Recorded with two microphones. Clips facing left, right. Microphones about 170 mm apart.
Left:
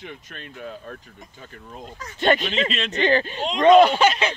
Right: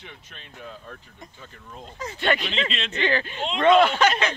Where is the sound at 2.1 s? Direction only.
40° left (ahead or behind).